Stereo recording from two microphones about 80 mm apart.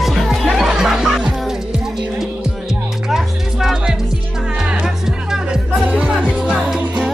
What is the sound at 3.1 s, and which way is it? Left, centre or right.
Music, centre.